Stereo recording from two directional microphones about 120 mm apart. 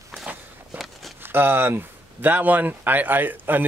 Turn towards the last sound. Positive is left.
turn(degrees=-15)  # may be behind; listen again after turning